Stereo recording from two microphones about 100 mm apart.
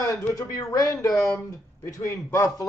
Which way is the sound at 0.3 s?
35° left (ahead or behind).